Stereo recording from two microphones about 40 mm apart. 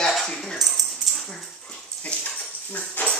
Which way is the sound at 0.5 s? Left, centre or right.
Centre.